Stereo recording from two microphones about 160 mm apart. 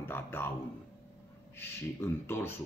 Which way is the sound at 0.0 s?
15° left (ahead or behind).